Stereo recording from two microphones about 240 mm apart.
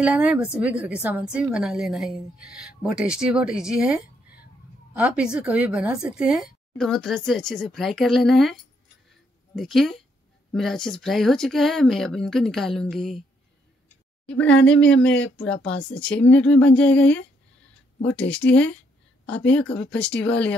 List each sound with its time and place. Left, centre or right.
0.0 s speech: centre
9.6 s speech: centre
14.2 s a woman's voice: centre
14.5 s speech: left
15.4 s speech: centre
18.3 s speech: centre